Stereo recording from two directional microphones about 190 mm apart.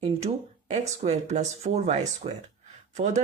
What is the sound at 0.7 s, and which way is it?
Speech, 35° right (ahead or behind).